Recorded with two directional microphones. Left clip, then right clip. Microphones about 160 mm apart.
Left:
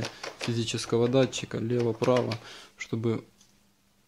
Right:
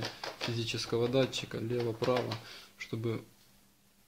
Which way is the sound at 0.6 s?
40° left (ahead or behind).